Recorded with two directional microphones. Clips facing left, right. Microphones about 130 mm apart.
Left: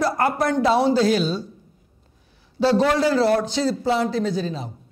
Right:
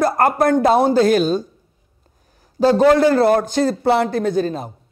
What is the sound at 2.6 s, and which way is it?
A man's voice, 50° right (ahead or behind).